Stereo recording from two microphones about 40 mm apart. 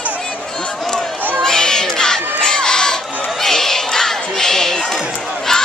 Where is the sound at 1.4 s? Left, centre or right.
Centre.